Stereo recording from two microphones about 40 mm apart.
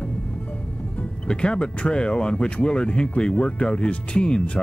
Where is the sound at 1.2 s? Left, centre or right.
Left.